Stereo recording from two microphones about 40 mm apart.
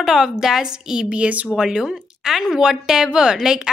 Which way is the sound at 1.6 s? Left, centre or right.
Centre.